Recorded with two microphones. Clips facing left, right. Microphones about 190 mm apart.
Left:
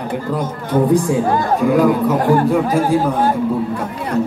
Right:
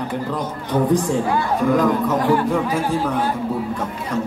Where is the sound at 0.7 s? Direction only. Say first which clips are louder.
Left 4 dB; 50° left (ahead or behind).